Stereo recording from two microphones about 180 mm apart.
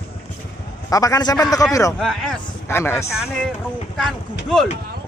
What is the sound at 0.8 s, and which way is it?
A man's voice, 20° left (ahead or behind).